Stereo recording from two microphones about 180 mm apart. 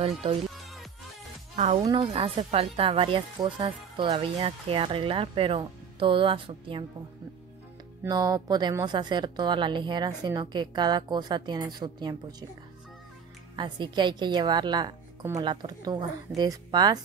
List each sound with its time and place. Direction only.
1.6 s speech: 35° right (ahead or behind)
8.0 s speech: 20° right (ahead or behind)
13.6 s speech: 25° right (ahead or behind)